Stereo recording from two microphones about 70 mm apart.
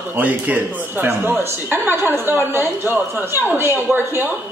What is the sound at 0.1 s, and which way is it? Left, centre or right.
Speech, right.